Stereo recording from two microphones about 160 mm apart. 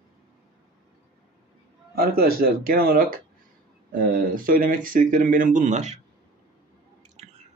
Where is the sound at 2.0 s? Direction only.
70° right (ahead or behind).